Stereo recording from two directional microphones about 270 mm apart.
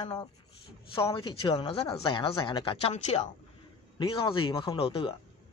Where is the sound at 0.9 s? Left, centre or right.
Centre.